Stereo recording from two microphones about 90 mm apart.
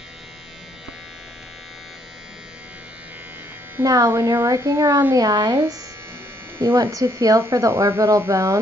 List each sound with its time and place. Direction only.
3.8 s speech: 40° right (ahead or behind)
5.1 s speech: 45° right (ahead or behind)
6.6 s speech: 30° right (ahead or behind)